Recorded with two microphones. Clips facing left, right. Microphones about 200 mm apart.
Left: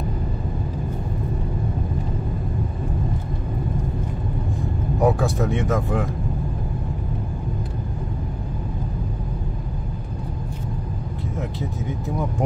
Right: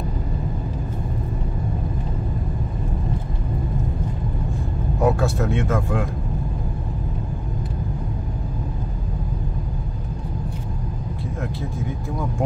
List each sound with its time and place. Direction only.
5.0 s speech: 15° left (ahead or behind)